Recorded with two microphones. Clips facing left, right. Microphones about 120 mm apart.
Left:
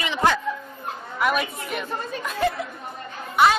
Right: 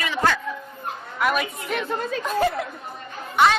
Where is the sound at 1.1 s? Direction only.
Centre (ahead or behind).